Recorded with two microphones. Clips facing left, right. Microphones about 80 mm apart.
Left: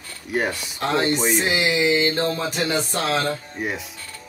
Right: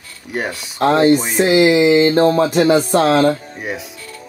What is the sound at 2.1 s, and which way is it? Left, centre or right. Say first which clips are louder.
Speech: right 11 dB; right.